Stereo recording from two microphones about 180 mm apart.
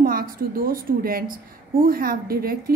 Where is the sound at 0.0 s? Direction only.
55° right (ahead or behind).